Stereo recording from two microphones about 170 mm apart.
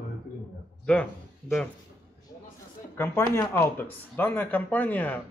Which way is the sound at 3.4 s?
15° left (ahead or behind).